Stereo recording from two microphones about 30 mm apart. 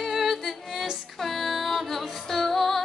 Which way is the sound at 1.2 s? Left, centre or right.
Centre.